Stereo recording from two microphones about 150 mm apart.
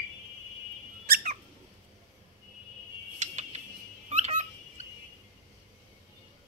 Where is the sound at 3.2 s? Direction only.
50° right (ahead or behind).